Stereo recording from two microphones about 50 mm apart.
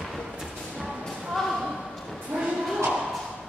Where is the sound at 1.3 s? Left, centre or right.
Centre.